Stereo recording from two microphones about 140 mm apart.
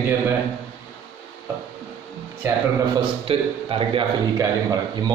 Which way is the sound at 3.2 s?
40° right (ahead or behind).